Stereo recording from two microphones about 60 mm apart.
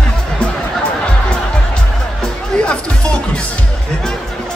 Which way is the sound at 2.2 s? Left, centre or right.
Centre.